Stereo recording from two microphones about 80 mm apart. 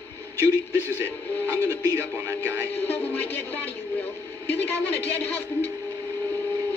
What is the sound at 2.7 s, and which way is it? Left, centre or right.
A man's voice, left.